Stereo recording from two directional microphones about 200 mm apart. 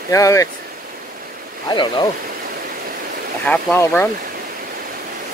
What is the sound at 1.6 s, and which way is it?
Speech, 20° left (ahead or behind).